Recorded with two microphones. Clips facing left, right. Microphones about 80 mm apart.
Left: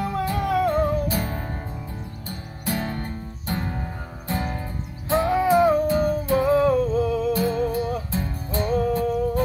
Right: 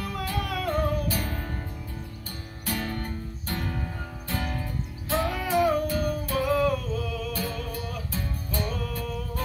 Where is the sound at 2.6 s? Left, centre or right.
Left.